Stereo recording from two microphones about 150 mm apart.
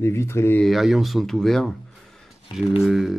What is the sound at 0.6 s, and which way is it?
Speech, centre (ahead or behind).